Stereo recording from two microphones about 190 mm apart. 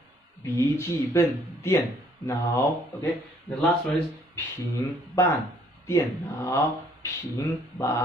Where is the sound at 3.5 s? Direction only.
30° left (ahead or behind).